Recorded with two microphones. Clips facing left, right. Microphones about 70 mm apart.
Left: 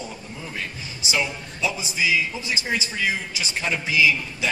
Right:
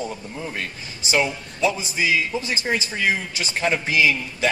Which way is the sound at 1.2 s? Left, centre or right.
Right.